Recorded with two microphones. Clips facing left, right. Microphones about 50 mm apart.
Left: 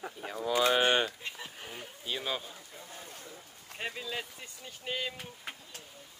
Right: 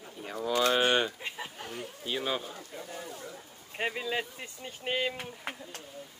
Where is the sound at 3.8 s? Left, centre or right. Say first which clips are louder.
Right 6 dB; right.